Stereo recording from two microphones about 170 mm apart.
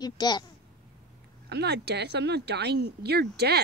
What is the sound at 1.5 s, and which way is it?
Speech, 75° right (ahead or behind).